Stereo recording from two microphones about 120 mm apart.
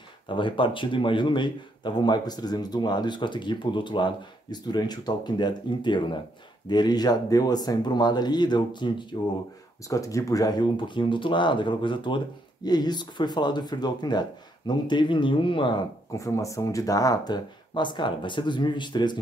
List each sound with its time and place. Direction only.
0.3 s speech: 45° left (ahead or behind)
9.8 s speech: 25° left (ahead or behind); by 15.8 s 45° left (ahead or behind)
16.1 s speech: 25° left (ahead or behind)